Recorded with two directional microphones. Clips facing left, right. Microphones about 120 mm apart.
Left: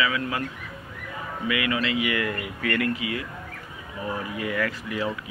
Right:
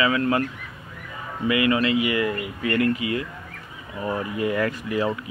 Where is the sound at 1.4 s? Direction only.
35° right (ahead or behind).